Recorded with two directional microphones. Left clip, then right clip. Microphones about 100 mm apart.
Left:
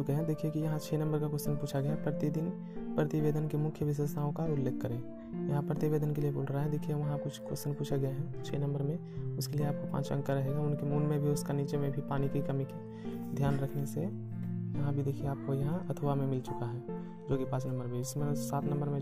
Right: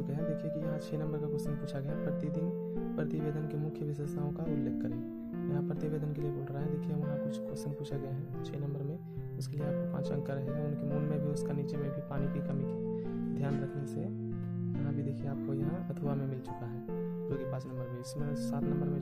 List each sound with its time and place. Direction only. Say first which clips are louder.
0.1 s speech: left 1 dB; 35° left (ahead or behind)
9.6 s speech: right 1 dB; 30° left (ahead or behind)
10.9 s speech: left 4 dB; 20° left (ahead or behind)
13.4 s speech: left 6 dB; 30° left (ahead or behind)
18.2 s speech: left 2 dB; 25° left (ahead or behind)